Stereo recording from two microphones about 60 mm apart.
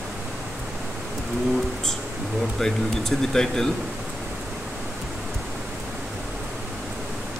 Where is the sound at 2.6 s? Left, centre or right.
Centre.